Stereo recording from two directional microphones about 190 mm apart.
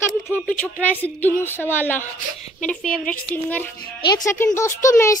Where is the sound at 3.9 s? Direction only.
20° left (ahead or behind).